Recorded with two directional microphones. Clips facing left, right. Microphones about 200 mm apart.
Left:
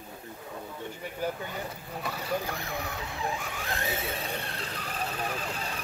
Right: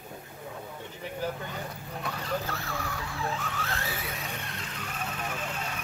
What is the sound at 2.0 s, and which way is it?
Vehicle, 10° left (ahead or behind).